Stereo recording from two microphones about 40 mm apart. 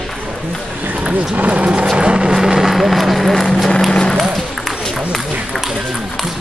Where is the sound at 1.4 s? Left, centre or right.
Right.